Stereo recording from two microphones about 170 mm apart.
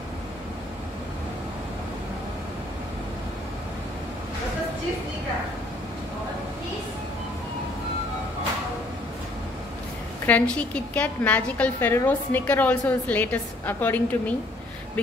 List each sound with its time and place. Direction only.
10.2 s a woman's voice: 5° left (ahead or behind)